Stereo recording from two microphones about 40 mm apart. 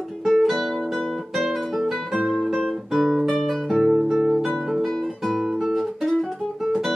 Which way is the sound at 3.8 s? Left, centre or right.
Centre.